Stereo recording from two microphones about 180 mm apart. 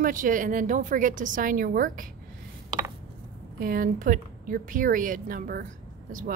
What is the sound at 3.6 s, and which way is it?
Speech, 50° right (ahead or behind).